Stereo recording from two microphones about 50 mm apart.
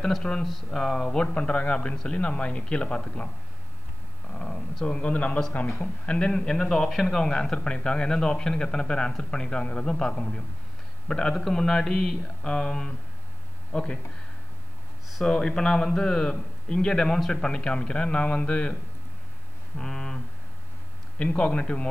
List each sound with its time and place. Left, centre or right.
0.0 s a man's voice: centre
4.8 s a man's voice: left
6.9 s a man's voice: centre
7.2 s a man's voice: centre
15.2 s a man's voice: centre
19.8 s a sound: centre
21.3 s a man's voice: left